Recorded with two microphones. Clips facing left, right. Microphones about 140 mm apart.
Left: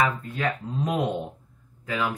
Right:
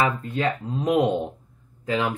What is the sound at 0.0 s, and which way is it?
Speech, 25° right (ahead or behind).